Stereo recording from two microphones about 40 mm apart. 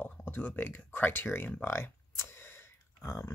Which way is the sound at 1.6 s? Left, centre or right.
Left.